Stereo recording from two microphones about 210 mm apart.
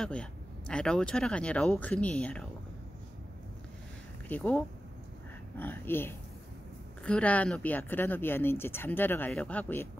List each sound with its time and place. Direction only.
0.0 s speech: 5° left (ahead or behind)
4.3 s speech: 10° left (ahead or behind)